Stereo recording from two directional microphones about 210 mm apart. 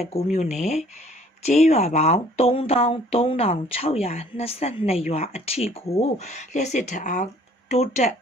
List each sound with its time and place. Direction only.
0.1 s speech: 35° left (ahead or behind)